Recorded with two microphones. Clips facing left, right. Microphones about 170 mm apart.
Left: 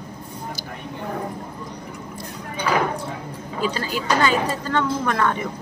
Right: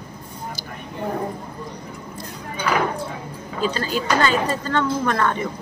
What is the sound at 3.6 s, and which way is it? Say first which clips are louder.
A man's voice: right 2 dB; 10° left (ahead or behind).